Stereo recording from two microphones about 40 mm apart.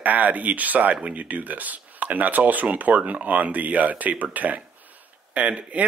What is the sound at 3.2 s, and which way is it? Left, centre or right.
Speech, right.